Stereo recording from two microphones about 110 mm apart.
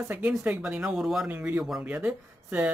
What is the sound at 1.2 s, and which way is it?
Speech, 15° right (ahead or behind).